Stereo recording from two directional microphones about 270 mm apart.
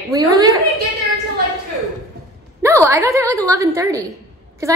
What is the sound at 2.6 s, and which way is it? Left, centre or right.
A woman's voice, centre.